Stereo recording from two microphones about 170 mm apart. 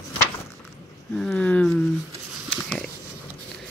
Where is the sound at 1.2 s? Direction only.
5° left (ahead or behind).